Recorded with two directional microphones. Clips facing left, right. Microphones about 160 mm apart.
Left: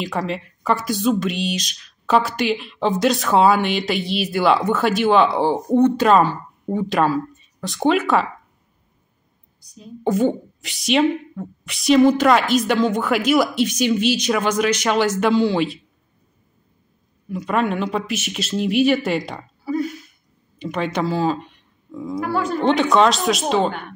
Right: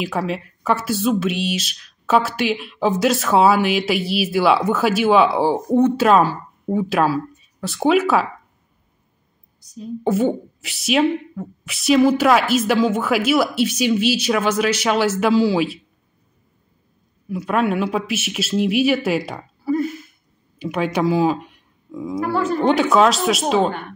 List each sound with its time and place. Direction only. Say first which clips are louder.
0.0 s speech: right 1 dB; 5° right (ahead or behind)
9.8 s speech: even; 5° right (ahead or behind)
17.3 s speech: right 1 dB; 5° right (ahead or behind)